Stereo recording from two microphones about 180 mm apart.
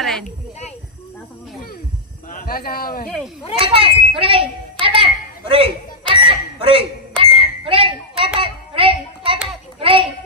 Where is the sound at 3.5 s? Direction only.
30° right (ahead or behind).